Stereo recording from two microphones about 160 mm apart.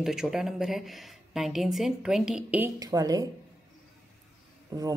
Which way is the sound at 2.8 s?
20° right (ahead or behind).